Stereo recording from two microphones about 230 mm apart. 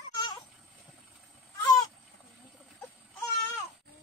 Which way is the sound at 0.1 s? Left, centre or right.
Centre.